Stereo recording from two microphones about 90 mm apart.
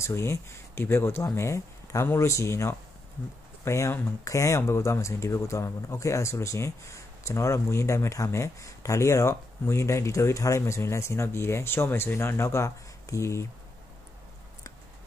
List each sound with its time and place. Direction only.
0.0 s speech: 30° left (ahead or behind)